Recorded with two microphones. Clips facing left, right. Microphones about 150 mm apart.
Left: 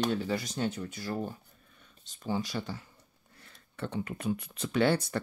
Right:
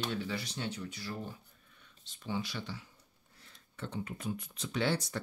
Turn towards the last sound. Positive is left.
turn(degrees=60)  # may be behind; listen again after turning